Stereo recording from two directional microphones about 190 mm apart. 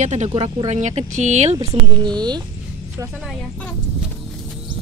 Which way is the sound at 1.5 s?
15° right (ahead or behind).